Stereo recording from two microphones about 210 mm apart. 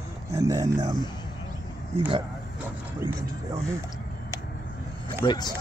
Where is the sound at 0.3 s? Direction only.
15° right (ahead or behind).